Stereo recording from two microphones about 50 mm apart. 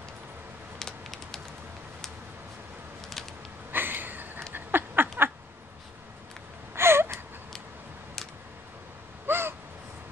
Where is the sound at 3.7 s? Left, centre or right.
Right.